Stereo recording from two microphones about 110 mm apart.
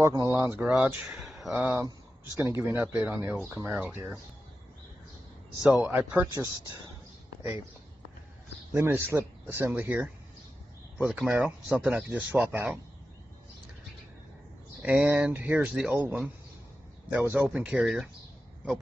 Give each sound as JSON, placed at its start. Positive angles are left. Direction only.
{"t": 0.0, "sound": "speech", "side_deg": -30}
{"t": 1.5, "sound": "speech", "side_deg": -10}
{"t": 1.9, "sound": "speech", "side_deg": -30}
{"t": 5.6, "sound": "speech", "side_deg": -10}
{"t": 8.7, "sound": "speech", "side_deg": -20}
{"t": 11.1, "sound": "speech", "side_deg": -15}
{"t": 14.8, "sound": "speech", "side_deg": -10}